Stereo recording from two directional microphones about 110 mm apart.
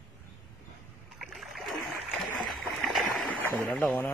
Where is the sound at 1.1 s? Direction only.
Centre (ahead or behind).